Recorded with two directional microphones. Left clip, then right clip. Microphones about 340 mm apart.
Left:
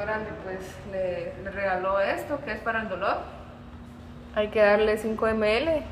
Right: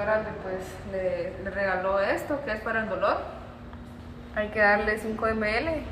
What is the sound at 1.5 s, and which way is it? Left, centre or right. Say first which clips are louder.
Speech: even; centre.